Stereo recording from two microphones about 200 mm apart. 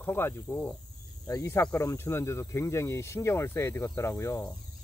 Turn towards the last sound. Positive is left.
turn(degrees=15)  # may be behind; listen again after turning